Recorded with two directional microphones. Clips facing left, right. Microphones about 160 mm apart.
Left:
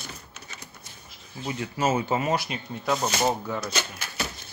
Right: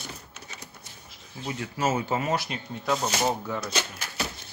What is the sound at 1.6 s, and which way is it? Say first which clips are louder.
Speech: left 2 dB; 20° left (ahead or behind).